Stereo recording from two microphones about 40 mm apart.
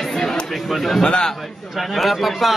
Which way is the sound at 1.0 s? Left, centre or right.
Left.